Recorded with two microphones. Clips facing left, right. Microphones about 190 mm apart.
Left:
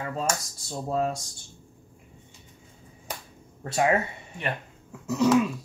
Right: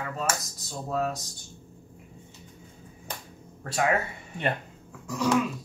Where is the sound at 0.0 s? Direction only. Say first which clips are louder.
Left 2 dB; 30° left (ahead or behind).